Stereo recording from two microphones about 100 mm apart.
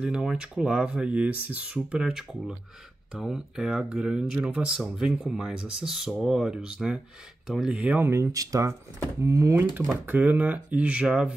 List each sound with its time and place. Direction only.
0.0 s speech: 10° right (ahead or behind)